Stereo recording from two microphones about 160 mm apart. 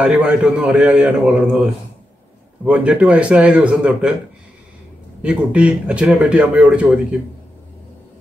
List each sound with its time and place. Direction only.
0.0 s speech: 5° right (ahead or behind)
5.2 s speech: 5° right (ahead or behind)